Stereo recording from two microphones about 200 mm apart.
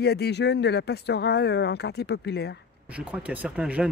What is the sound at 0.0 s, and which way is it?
Speech, 55° left (ahead or behind).